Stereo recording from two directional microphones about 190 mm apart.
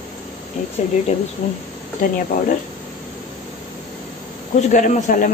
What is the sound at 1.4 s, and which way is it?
Speech, 40° left (ahead or behind).